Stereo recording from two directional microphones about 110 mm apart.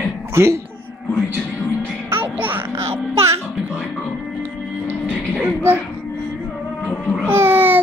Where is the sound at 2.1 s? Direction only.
20° right (ahead or behind).